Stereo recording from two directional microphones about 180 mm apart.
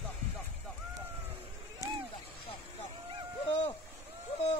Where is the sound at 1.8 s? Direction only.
20° left (ahead or behind).